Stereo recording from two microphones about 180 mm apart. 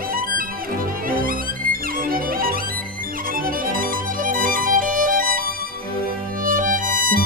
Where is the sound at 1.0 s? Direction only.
50° right (ahead or behind).